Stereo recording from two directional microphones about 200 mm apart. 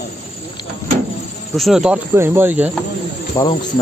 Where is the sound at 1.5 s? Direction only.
Centre (ahead or behind).